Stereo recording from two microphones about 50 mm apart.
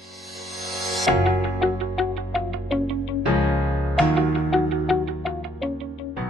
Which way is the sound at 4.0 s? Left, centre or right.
Centre.